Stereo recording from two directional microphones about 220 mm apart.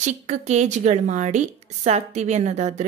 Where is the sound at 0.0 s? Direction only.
30° right (ahead or behind).